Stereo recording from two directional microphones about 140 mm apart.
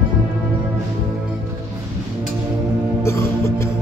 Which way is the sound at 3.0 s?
20° left (ahead or behind).